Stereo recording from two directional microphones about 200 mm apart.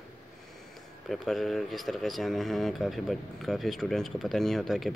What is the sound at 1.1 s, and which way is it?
Speech, centre (ahead or behind).